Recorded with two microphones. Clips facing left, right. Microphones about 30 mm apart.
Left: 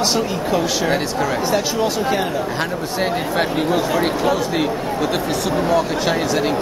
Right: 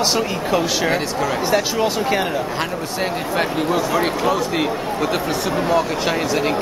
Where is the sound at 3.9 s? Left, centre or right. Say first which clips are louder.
Even; centre.